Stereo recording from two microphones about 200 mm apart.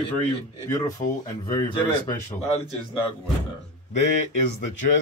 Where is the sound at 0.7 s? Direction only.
15° left (ahead or behind).